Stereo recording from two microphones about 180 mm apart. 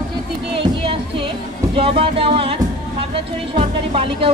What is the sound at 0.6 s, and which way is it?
Speech, 30° right (ahead or behind).